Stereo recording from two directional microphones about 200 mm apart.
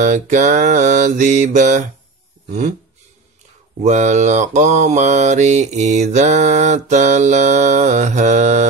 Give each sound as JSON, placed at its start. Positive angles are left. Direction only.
{"t": 0.0, "sound": "mantra", "side_deg": -40}
{"t": 3.8, "sound": "mantra", "side_deg": -35}